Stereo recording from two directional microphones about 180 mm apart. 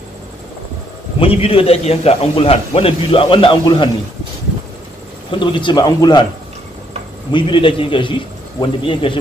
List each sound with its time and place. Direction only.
1.2 s a man's voice: 30° left (ahead or behind)
5.3 s a man's voice: 25° left (ahead or behind)
7.3 s a man's voice: 30° left (ahead or behind)